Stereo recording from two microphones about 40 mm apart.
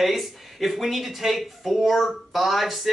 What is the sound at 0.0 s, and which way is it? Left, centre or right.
Speech, centre.